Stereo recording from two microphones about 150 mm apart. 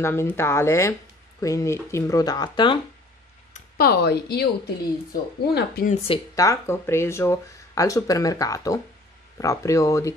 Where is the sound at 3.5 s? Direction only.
90° left.